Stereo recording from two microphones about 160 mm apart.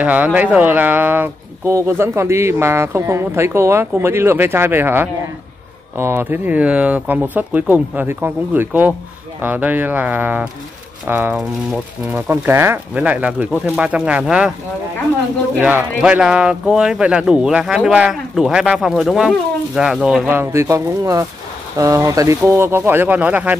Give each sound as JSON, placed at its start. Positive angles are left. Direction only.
{"t": 0.0, "sound": "speech", "side_deg": -10}
{"t": 16.0, "sound": "speech", "side_deg": -5}